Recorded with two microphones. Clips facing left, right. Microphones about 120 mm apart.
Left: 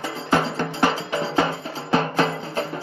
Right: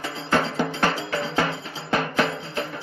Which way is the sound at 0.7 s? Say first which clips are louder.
Left 2 dB; 20° left (ahead or behind).